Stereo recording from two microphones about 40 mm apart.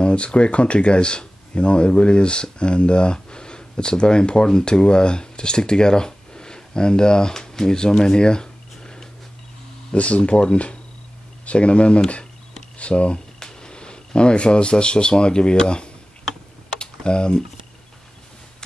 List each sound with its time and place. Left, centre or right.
0.0 s speech: left
9.9 s speech: left
13.4 s speech: centre
16.7 s computer keyboard: left